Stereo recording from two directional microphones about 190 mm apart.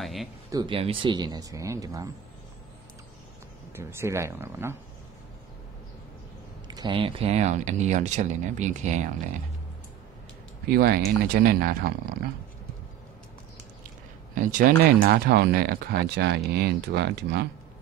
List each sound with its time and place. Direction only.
0.0 s speech: centre (ahead or behind)
0.5 s speech: 25° right (ahead or behind)
3.7 s speech: 15° right (ahead or behind)
6.7 s speech: 25° right (ahead or behind); by 9.1 s 40° right (ahead or behind)
10.7 s speech: 55° right (ahead or behind)
14.3 s speech: 45° right (ahead or behind)